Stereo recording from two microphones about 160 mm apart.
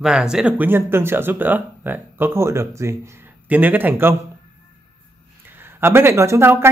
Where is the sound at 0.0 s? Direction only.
5° right (ahead or behind).